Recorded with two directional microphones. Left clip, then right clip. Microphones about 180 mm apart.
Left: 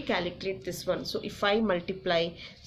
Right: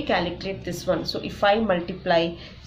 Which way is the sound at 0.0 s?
30° left (ahead or behind).